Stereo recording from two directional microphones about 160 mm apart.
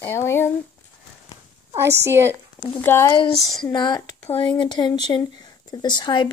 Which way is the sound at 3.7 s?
30° left (ahead or behind).